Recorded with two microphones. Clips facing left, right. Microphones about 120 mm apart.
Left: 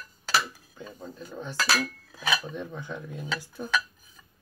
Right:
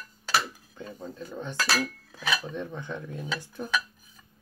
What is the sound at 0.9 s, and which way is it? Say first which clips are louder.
Speech: right 2 dB; centre (ahead or behind).